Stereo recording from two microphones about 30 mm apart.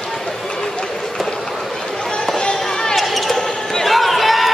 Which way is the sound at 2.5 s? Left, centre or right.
Centre.